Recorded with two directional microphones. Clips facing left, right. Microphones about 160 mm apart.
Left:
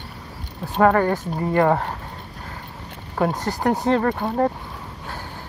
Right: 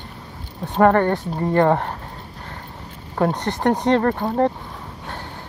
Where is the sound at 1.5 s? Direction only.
30° right (ahead or behind).